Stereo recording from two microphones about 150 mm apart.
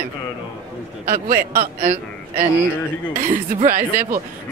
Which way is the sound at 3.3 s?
70° right (ahead or behind).